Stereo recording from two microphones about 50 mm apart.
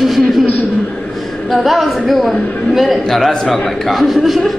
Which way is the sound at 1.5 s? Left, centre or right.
Centre.